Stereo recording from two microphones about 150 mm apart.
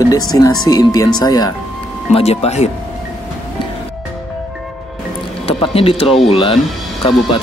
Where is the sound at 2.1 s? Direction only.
40° left (ahead or behind).